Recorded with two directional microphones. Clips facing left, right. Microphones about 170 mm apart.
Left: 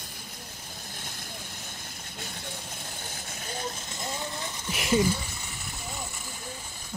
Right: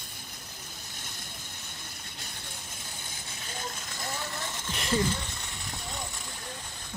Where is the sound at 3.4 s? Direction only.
35° left (ahead or behind).